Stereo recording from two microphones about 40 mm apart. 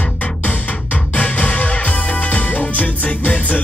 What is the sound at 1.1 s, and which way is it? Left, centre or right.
Music, left.